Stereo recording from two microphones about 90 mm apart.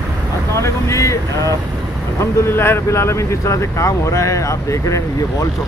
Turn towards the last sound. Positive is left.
turn(degrees=35)  # may be behind; listen again after turning